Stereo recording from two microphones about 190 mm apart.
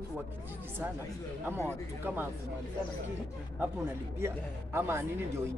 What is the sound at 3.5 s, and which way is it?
Speech, 10° right (ahead or behind).